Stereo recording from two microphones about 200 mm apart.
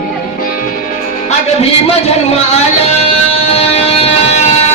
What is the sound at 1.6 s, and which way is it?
Music, 30° left (ahead or behind).